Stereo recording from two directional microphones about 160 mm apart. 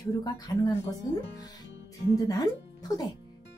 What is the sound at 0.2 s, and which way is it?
Speech, 25° left (ahead or behind).